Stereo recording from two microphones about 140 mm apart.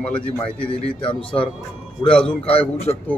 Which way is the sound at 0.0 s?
10° left (ahead or behind).